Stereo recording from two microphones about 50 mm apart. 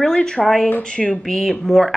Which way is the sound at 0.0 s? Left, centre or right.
Centre.